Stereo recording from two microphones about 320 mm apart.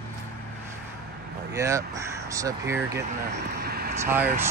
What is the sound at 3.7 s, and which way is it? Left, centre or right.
Vehicle, right.